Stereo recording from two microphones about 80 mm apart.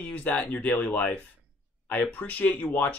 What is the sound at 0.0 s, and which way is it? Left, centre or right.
Speech, left.